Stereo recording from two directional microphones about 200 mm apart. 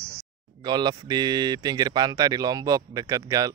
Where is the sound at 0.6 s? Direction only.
20° right (ahead or behind).